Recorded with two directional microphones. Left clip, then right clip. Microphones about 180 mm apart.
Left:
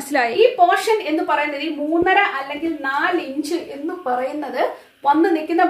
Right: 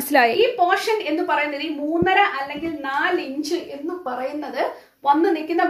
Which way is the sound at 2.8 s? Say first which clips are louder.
Left 1 dB; 10° left (ahead or behind).